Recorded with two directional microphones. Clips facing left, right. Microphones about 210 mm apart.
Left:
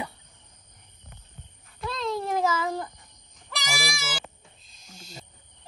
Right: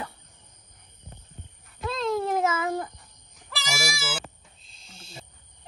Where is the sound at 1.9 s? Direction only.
Centre (ahead or behind).